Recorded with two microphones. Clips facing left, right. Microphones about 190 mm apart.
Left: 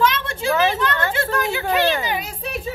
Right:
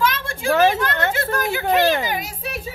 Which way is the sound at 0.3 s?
45° right (ahead or behind).